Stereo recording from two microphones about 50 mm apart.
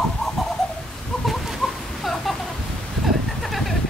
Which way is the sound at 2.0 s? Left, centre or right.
Centre.